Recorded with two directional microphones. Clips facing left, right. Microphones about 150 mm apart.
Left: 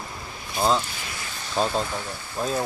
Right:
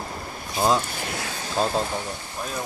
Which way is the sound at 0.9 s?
55° right (ahead or behind).